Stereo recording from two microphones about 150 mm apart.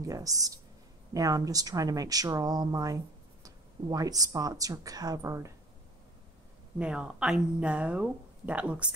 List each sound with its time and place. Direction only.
0.0 s speech: 20° right (ahead or behind)
6.8 s speech: 5° right (ahead or behind)